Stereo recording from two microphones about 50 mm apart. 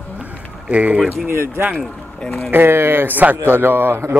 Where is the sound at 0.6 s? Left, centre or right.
Right.